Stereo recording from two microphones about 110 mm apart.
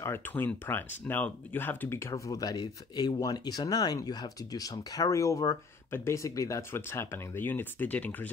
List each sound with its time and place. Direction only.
0.0 s speech: 20° left (ahead or behind)